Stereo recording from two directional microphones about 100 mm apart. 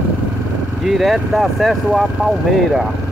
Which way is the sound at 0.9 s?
Centre (ahead or behind).